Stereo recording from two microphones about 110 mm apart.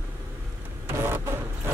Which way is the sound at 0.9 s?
25° right (ahead or behind).